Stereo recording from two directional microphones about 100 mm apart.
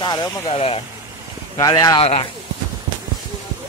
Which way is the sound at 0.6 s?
75° left (ahead or behind).